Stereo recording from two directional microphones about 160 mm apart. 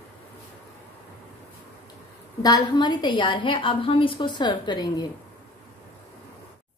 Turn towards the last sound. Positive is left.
turn(degrees=25)  # may be behind; listen again after turning